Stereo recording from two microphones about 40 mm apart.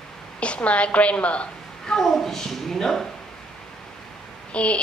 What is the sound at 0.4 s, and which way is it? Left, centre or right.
A woman's voice, left.